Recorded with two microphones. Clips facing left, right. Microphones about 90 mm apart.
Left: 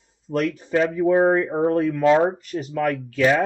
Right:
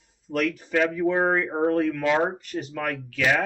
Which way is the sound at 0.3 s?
30° left (ahead or behind).